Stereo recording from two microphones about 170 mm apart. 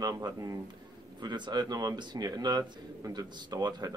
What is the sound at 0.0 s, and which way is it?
Speech, 20° right (ahead or behind).